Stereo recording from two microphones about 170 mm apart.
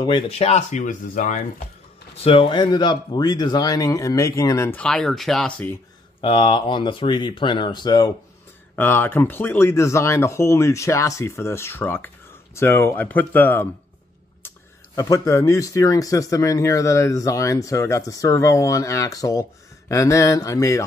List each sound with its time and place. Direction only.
0.0 s speech: 30° left (ahead or behind); by 1.4 s 50° left (ahead or behind)
2.2 s speech: 30° left (ahead or behind); by 5.8 s 5° left (ahead or behind)
6.2 s speech: 30° left (ahead or behind)
8.7 s speech: 10° left (ahead or behind)
15.0 s speech: 20° left (ahead or behind)